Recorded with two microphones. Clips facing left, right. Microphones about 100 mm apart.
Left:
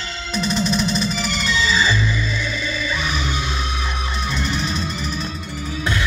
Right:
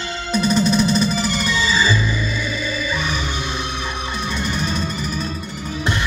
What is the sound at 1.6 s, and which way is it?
Music, 10° right (ahead or behind).